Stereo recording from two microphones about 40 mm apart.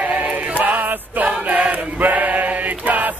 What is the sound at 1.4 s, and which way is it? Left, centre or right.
Choir, right.